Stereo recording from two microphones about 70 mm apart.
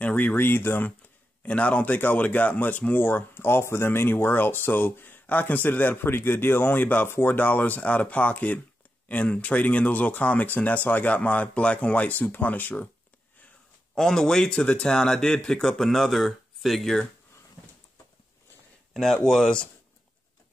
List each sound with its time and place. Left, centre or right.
0.0 s speech: left
1.4 s speech: left
13.9 s speech: centre
18.9 s speech: centre